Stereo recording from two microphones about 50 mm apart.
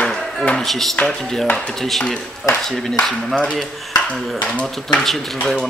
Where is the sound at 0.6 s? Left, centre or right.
Centre.